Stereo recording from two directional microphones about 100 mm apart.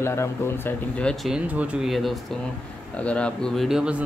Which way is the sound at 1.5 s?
15° right (ahead or behind).